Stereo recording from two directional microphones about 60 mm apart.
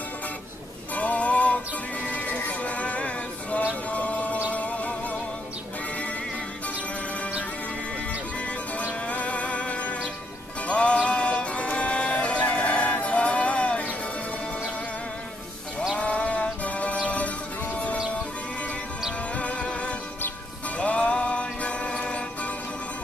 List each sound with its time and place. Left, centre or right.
0.9 s music: left
8.7 s music: left
16.0 s music: left
19.3 s music: left